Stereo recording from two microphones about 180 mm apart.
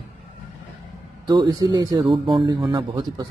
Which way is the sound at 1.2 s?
20° right (ahead or behind).